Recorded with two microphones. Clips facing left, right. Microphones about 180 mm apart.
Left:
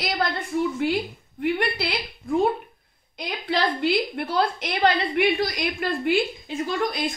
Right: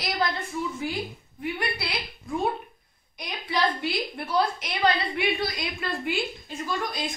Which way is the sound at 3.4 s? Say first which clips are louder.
Left 4 dB; 90° left.